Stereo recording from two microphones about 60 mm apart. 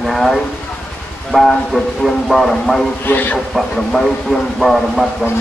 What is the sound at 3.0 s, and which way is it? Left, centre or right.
Speech, left.